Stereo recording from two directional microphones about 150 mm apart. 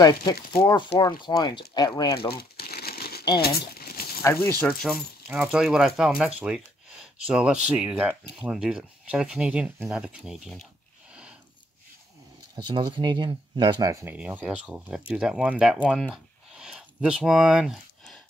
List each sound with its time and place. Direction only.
0.0 s speech: 30° left (ahead or behind)
2.3 s crumpling: 90° left
3.3 s a sound: 90° left
4.2 s speech: 15° left (ahead or behind)
4.8 s speech: 5° right (ahead or behind)
12.5 s speech: 30° right (ahead or behind)
14.0 s speech: 10° right (ahead or behind)